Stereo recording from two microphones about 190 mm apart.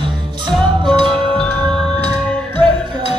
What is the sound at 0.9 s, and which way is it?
Music, 25° right (ahead or behind).